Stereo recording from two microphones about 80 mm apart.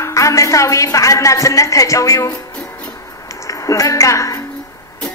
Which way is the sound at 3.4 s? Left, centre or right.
Left.